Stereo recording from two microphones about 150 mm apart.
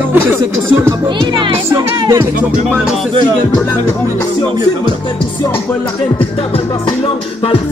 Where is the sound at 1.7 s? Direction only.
25° right (ahead or behind).